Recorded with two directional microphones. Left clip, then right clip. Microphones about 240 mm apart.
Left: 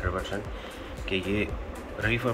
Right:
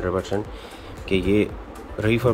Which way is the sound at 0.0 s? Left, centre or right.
Right.